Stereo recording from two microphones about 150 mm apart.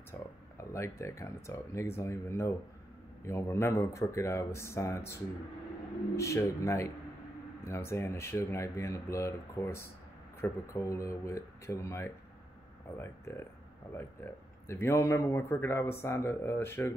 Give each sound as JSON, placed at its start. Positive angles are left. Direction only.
{"t": 0.1, "sound": "a man's voice", "side_deg": 15}
{"t": 6.1, "sound": "a man's voice", "side_deg": 20}